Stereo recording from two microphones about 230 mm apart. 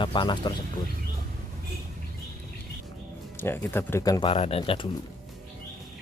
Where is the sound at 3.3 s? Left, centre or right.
Centre.